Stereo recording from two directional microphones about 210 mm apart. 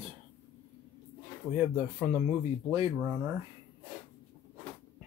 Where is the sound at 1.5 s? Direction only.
10° right (ahead or behind).